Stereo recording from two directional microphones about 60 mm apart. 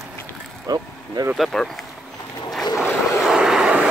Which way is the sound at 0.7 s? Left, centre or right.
Right.